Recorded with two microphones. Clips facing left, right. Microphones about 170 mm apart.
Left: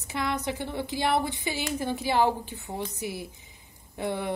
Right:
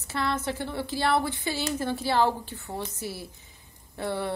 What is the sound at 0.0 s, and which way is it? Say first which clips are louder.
A woman's voice: right 1 dB; 15° left (ahead or behind).